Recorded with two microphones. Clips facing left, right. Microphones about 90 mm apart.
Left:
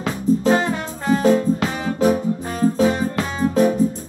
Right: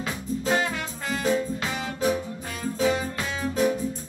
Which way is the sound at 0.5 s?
35° left (ahead or behind).